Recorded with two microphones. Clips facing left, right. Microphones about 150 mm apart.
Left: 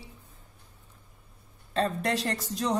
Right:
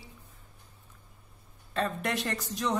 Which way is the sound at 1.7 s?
35° left (ahead or behind).